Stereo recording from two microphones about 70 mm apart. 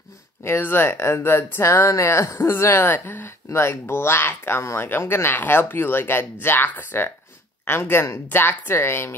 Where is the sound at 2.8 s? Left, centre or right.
Left.